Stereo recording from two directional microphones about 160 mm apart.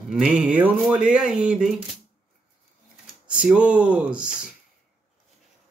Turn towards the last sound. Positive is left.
turn(degrees=-10)  # may be behind; listen again after turning